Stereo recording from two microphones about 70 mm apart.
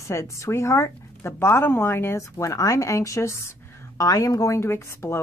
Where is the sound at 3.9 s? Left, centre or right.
Left.